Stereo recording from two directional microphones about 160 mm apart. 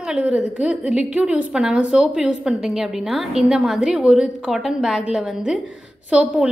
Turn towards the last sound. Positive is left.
turn(degrees=-5)  # may be behind; listen again after turning